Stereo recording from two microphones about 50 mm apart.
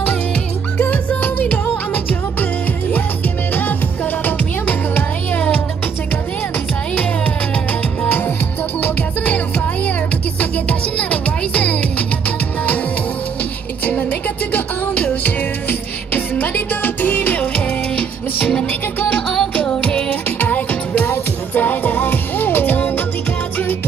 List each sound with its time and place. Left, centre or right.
0.8 s music: left
4.2 s music: left
8.8 s music: left
10.4 s music: left
16.1 s music: left
18.7 s music: left
19.8 s music: left
20.1 s music: left